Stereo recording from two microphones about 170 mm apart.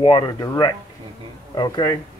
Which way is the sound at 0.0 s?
25° left (ahead or behind).